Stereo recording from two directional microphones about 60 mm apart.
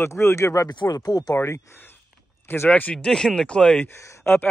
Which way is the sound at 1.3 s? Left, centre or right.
Left.